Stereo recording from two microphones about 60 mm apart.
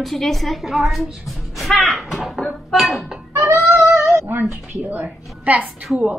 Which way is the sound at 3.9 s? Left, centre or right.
Right.